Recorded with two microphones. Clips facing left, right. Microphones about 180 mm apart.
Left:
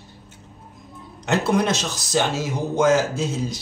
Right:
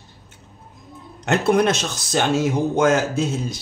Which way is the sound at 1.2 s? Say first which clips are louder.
Right 3 dB; 60° right (ahead or behind).